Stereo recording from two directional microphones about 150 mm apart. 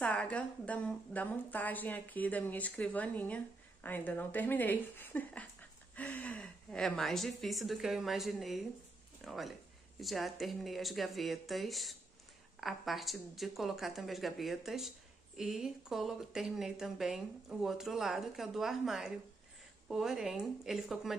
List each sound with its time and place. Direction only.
0.0 s a woman's voice: 10° left (ahead or behind)